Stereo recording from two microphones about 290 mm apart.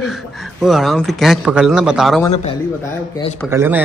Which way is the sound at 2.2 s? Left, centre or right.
Centre.